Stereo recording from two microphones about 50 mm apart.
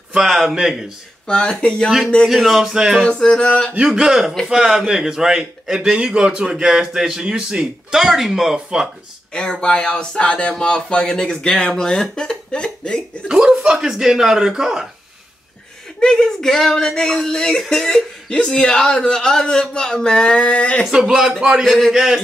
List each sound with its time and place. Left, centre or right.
0.2 s a man's voice: centre
1.2 s speech: centre
2.2 s speech: centre
3.2 s speech: centre
3.7 s a man's voice: centre
9.3 s speech: centre
13.3 s a man's voice: centre
16.0 s speech: centre
20.9 s a man's voice: centre
21.6 s speech: centre